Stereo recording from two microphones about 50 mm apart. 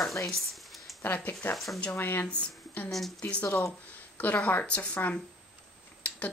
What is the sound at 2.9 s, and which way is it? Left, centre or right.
Speech, centre.